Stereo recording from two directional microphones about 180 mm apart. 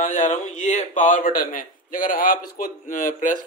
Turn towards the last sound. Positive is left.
turn(degrees=45)  # may be behind; listen again after turning